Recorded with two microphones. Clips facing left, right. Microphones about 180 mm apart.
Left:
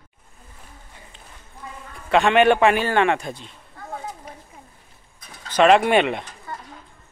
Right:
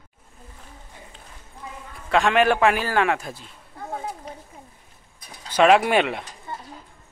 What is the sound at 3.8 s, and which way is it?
Children playing, 25° right (ahead or behind).